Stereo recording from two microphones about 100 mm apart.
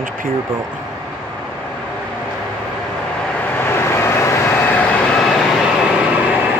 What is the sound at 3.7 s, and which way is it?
Vehicle, 25° left (ahead or behind).